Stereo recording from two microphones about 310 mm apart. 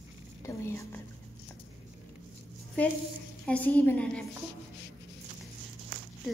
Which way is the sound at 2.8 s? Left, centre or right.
Centre.